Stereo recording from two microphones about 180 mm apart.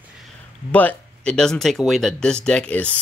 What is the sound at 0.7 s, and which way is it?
Speech, 10° left (ahead or behind).